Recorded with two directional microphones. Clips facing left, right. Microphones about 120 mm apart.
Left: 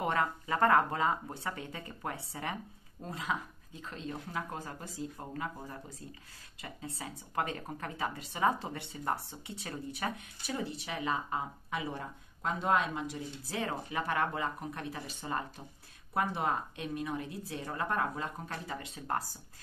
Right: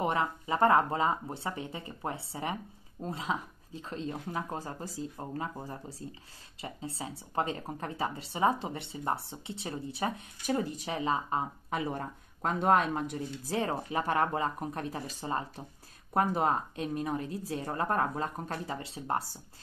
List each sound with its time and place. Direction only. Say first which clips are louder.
0.0 s speech: right 2 dB; 20° right (ahead or behind)
10.4 s speech: right 6 dB; 45° right (ahead or behind); by 19.2 s 25° right (ahead or behind)